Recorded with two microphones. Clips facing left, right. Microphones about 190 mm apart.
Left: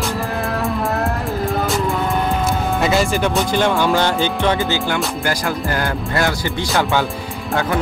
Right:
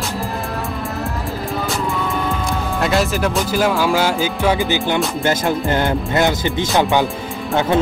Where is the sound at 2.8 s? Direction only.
Centre (ahead or behind).